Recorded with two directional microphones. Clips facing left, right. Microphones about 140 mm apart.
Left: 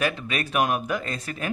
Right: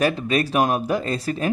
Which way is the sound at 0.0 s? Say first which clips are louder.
Right 6 dB; 35° right (ahead or behind).